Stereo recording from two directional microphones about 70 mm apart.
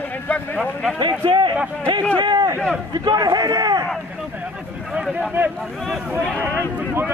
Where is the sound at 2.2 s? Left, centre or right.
Right.